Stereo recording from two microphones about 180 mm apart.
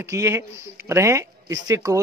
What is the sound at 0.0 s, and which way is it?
Speech, 15° right (ahead or behind).